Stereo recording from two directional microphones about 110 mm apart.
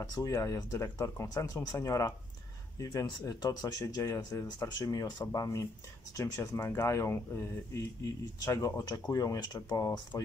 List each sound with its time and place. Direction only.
0.1 s speech: 30° left (ahead or behind)